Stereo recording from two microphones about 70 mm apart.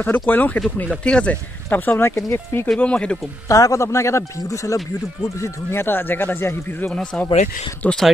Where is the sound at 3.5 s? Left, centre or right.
Left.